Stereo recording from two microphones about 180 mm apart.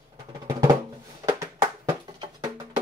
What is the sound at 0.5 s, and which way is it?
Drum, 20° right (ahead or behind).